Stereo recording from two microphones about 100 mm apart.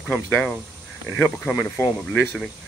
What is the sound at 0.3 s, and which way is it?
Speech, 15° left (ahead or behind).